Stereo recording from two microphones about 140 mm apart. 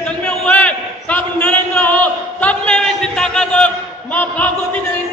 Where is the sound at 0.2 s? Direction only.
10° left (ahead or behind).